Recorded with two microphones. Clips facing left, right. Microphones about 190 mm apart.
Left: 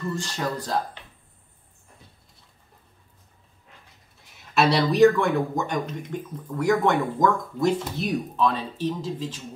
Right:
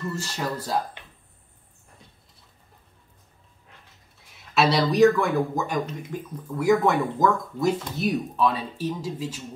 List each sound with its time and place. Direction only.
0.0 s speech: 5° right (ahead or behind)
4.6 s speech: centre (ahead or behind)